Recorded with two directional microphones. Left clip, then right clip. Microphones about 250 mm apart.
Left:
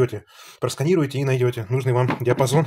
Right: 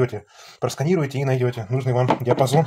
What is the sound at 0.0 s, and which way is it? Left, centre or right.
Speech, left.